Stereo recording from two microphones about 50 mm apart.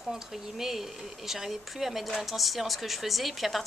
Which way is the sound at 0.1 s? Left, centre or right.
Centre.